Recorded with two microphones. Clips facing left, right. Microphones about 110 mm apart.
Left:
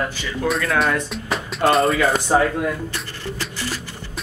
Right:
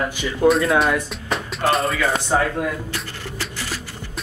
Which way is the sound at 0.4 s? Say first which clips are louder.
Right 7 dB; 25° right (ahead or behind).